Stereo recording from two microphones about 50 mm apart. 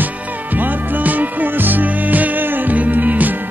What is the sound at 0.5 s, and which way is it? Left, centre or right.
Music, right.